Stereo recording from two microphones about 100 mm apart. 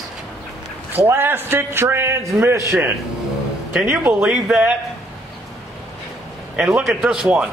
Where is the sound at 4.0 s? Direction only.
15° right (ahead or behind).